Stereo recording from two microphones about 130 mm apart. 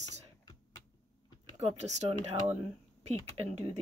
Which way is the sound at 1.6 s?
60° right (ahead or behind).